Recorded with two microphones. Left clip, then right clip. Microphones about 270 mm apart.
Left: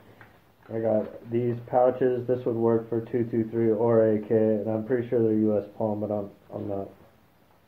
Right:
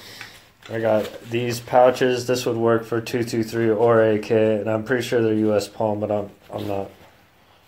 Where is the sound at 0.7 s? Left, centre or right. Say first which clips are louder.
Right 5 dB; right.